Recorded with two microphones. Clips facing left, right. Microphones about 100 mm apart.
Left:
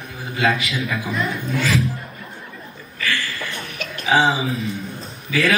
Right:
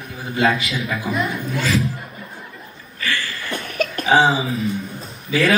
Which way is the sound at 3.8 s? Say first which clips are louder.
Right 12 dB; 45° right (ahead or behind).